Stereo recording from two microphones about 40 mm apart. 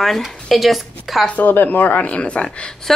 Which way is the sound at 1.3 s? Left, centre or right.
Left.